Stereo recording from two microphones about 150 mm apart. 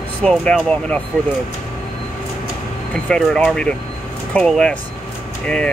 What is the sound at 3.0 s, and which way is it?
Speech, 5° left (ahead or behind).